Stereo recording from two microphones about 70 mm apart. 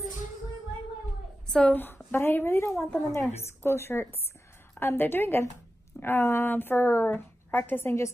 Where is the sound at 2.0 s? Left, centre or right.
Left.